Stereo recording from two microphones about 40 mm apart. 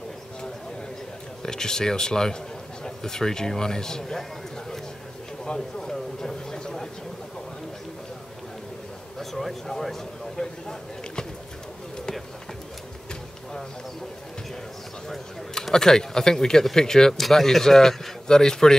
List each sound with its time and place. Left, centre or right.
1.4 s speech: centre
9.2 s speech: centre
15.0 s speech: centre